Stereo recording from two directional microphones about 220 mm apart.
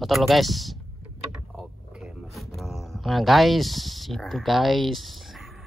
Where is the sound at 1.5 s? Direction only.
Centre (ahead or behind).